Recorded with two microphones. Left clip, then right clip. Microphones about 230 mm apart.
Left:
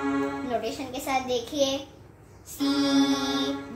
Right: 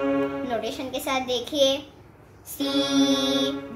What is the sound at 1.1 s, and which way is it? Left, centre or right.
Music, right.